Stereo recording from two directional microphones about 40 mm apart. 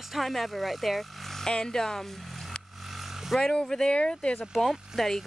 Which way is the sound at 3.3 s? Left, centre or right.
Centre.